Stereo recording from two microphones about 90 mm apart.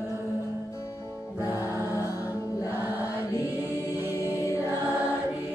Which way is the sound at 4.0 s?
25° right (ahead or behind).